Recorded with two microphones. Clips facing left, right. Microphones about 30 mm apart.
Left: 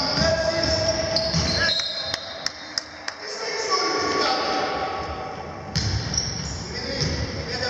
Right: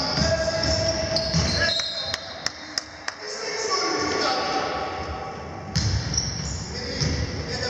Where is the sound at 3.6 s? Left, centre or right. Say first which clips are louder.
Left 2 dB; centre.